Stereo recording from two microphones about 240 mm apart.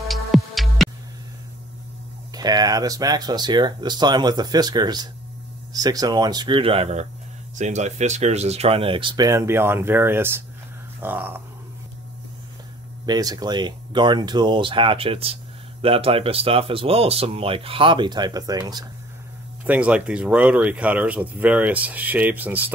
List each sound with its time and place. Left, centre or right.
0.1 s music: centre
2.3 s speech: centre
13.0 s speech: centre
19.6 s speech: centre